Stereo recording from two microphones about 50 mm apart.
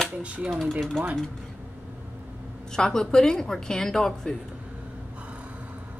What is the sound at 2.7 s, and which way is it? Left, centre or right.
A woman's voice, centre.